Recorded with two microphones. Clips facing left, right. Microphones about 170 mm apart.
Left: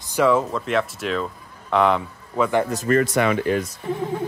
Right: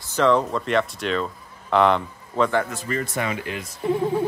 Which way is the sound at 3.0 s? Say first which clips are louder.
Left 7 dB; 80° left.